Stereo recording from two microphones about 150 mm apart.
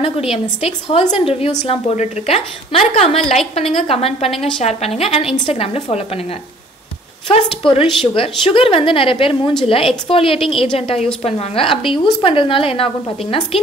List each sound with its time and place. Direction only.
0.0 s a woman's voice: 40° left (ahead or behind)
7.2 s a woman's voice: 35° left (ahead or behind)